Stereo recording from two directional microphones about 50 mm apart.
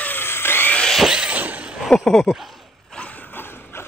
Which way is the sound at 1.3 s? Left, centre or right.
Right.